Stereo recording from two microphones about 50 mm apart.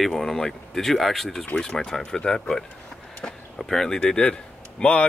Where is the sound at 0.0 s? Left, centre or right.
Centre.